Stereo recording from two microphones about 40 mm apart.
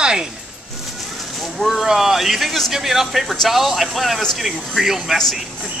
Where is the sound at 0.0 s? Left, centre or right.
Centre.